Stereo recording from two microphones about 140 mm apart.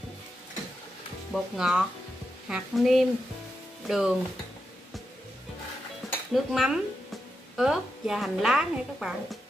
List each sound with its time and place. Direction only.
1.3 s a woman's voice: 5° right (ahead or behind)
6.3 s a woman's voice: centre (ahead or behind)